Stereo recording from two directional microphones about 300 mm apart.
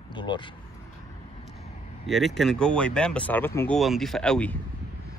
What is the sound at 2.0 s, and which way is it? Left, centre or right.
A man's voice, centre.